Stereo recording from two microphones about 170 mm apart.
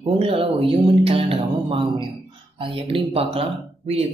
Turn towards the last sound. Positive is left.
turn(degrees=-35)  # may be behind; listen again after turning